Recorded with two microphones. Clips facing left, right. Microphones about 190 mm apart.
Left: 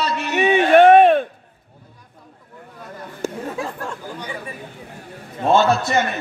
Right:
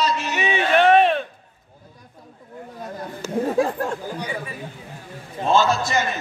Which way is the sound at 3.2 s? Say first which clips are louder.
Left 2 dB; 50° left (ahead or behind).